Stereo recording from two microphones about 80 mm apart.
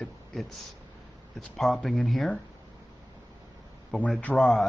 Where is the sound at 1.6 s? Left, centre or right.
Centre.